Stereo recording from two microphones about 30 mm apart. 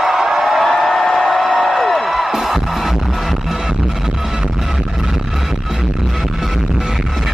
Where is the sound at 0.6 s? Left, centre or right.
Centre.